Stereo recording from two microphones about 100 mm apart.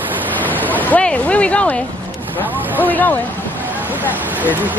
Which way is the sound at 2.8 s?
20° left (ahead or behind).